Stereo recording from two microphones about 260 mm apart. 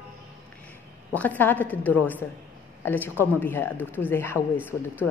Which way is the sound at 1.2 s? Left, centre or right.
Centre.